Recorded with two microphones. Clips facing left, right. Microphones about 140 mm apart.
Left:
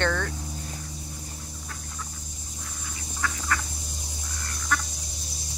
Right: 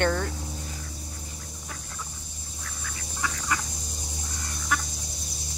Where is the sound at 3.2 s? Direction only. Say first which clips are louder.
Left 1 dB; 15° right (ahead or behind).